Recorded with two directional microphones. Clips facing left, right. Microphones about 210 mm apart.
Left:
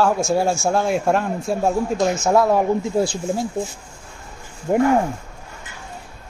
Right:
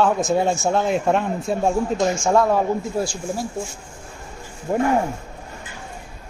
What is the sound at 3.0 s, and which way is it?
Speech, 25° left (ahead or behind).